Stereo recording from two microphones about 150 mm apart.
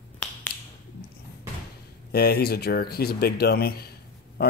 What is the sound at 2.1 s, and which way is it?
Speech, 90° left.